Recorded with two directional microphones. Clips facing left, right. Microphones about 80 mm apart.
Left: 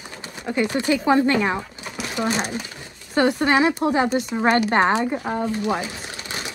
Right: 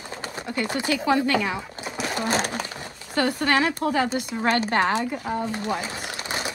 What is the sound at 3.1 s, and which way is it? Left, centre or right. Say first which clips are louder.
A woman's voice: left 4 dB; left.